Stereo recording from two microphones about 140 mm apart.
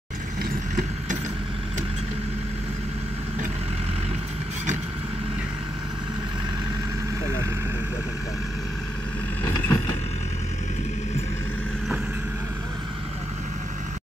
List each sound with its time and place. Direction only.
0.4 s vehicle: 75° right (ahead or behind)
9.4 s vehicle: 25° left (ahead or behind)